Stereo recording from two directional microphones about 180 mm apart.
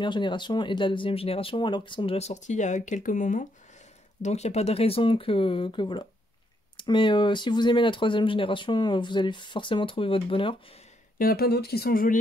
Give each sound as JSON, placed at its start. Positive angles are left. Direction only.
{"t": 0.0, "sound": "speech", "side_deg": 25}
{"t": 11.1, "sound": "speech", "side_deg": 55}